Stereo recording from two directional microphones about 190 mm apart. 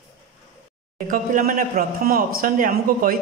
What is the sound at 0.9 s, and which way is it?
Speech, 45° right (ahead or behind).